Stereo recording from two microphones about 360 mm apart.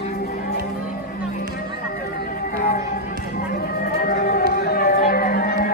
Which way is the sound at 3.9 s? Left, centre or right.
Left.